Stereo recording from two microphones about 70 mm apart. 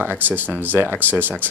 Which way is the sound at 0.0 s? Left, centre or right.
Right.